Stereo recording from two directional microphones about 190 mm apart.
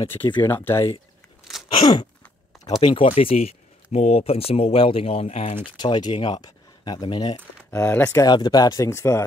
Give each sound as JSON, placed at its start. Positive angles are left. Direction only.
{"t": 0.4, "sound": "speech", "side_deg": 10}
{"t": 1.7, "sound": "a sound", "side_deg": 20}
{"t": 2.8, "sound": "speech", "side_deg": 30}
{"t": 7.7, "sound": "speech", "side_deg": 10}